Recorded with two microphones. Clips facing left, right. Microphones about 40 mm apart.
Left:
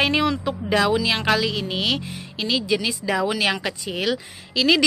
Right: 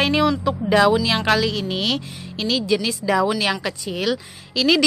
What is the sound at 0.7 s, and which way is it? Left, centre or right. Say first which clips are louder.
Speech: right 4 dB; centre.